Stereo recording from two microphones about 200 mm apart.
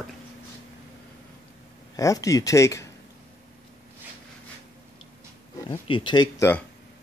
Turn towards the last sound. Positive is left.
turn(degrees=20)  # may be behind; listen again after turning